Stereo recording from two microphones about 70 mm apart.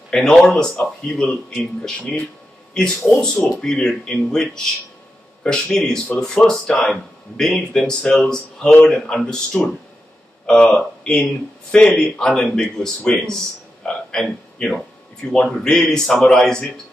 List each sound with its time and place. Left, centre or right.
0.1 s speech: centre
2.7 s speech: centre
13.8 s a sound: centre
15.5 s speech: centre